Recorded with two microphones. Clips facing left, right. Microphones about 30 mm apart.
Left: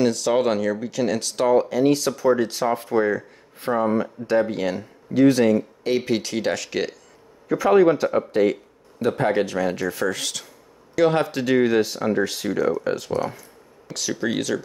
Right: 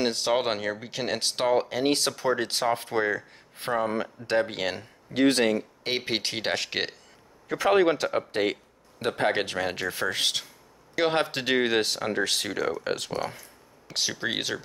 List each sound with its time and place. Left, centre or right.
0.0 s speech: right
0.3 s speech: right
1.6 s speech: right
3.7 s speech: right
4.0 s speech: right
7.4 s speech: right
11.3 s speech: right
13.9 s speech: right